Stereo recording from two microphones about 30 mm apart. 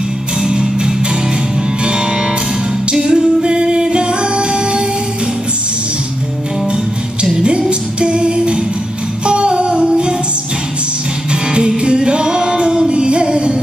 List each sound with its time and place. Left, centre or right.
0.4 s music: right
7.4 s music: right
11.6 s music: right